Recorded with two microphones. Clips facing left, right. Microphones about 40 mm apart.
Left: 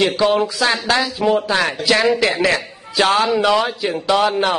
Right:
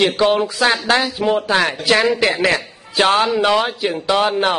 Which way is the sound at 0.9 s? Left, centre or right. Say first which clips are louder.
Even; right.